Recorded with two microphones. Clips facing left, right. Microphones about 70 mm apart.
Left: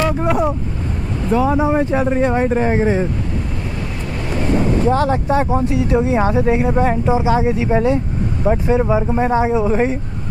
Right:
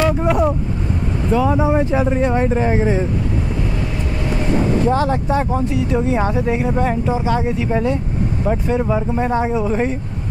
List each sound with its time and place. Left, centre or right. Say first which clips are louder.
0.0 s speech: right 1 dB; centre
4.8 s speech: left 1 dB; centre